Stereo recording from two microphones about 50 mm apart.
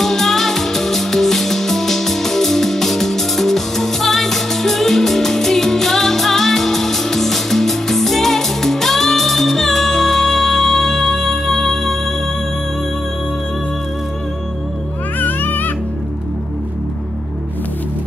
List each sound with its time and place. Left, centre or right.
0.0 s music: centre
15.1 s music: left